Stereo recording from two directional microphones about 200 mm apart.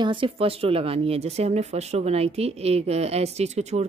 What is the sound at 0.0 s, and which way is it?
Speech, 25° right (ahead or behind).